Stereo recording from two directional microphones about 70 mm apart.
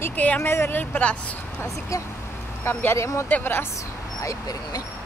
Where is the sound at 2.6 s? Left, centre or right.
Left.